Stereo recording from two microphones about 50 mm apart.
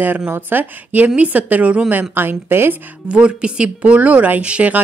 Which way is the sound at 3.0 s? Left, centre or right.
Centre.